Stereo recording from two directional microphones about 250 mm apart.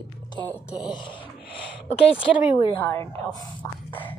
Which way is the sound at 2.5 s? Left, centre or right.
Centre.